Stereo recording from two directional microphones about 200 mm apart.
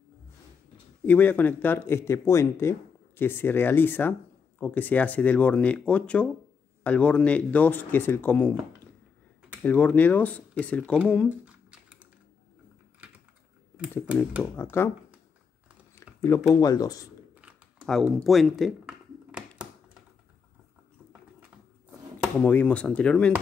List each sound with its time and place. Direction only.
1.0 s speech: 10° left (ahead or behind)
9.6 s speech: 10° left (ahead or behind)
11.2 s typing: 5° right (ahead or behind)
14.0 s speech: 5° right (ahead or behind)
14.4 s speech: 10° left (ahead or behind)
15.9 s speech: 15° left (ahead or behind)
17.4 s computer keyboard: 5° right (ahead or behind)
22.4 s speech: 5° left (ahead or behind)